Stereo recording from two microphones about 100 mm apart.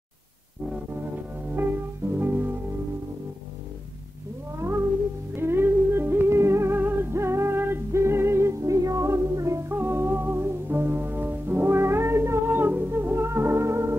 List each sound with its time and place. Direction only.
2.1 s music: 20° right (ahead or behind)
5.3 s music: 25° right (ahead or behind)